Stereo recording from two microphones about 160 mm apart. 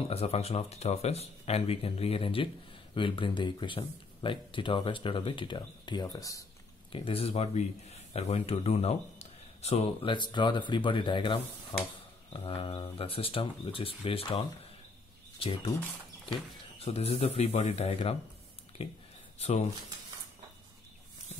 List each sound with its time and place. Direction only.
0.0 s speech: 40° left (ahead or behind); by 6.4 s 20° left (ahead or behind)
6.9 s a man's voice: 35° left (ahead or behind)
10.1 s speech: 30° left (ahead or behind)